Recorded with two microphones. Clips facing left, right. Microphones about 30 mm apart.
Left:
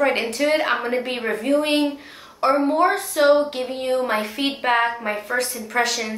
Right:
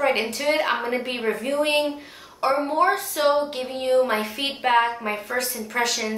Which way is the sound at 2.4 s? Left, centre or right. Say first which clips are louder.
Left 3 dB; centre.